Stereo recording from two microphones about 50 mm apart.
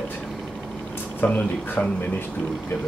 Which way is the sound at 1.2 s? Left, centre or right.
Left.